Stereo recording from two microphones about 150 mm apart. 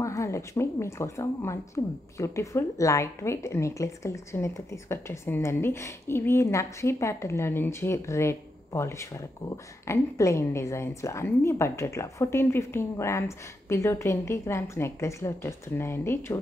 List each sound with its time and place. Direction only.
0.0 s a woman's voice: 20° left (ahead or behind)